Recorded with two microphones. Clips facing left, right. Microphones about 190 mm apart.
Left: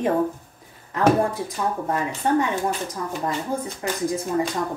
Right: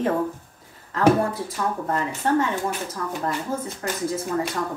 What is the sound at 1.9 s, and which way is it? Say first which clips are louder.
Speech: even; 15° left (ahead or behind).